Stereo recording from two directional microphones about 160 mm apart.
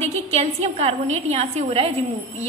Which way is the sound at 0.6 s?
40° right (ahead or behind).